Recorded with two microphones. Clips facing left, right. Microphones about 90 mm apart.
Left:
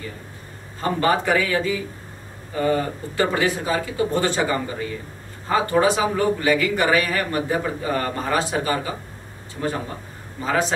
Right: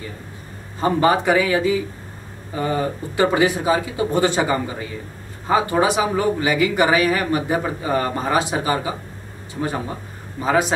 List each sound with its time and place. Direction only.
0.7 s speech: 20° right (ahead or behind)
10.4 s speech: 15° right (ahead or behind)